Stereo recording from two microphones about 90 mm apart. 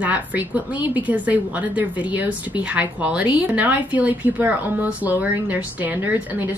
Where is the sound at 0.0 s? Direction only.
15° right (ahead or behind).